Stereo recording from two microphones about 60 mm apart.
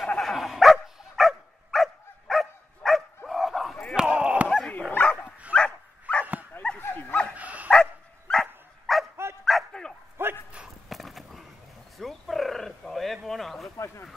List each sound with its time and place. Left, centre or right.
0.2 s dog: centre
3.9 s a sound: centre
4.5 s dog: left
6.8 s dog: left
7.3 s dog: right
7.7 s dog: centre
9.1 s dog: right
9.4 s dog: centre
10.2 s dog: right
10.9 s a sound: centre
12.0 s roaring cats: centre
13.7 s a sound: left